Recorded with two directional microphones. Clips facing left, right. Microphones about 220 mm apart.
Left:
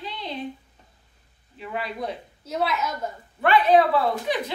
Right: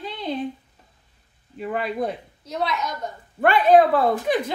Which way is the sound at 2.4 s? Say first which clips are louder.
Even; 5° left (ahead or behind).